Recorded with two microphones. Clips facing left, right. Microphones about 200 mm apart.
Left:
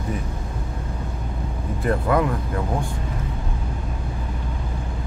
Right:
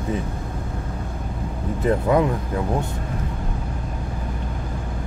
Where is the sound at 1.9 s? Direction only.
20° right (ahead or behind).